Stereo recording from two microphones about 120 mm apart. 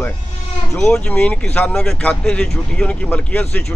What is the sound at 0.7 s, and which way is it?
Speech, 5° left (ahead or behind).